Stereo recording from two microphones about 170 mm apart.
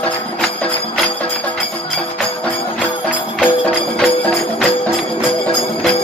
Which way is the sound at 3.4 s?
5° left (ahead or behind).